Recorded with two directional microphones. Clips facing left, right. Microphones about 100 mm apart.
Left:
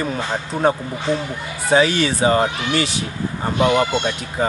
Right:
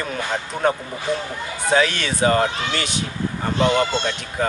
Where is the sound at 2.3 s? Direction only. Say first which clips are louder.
Left 2 dB; 15° left (ahead or behind).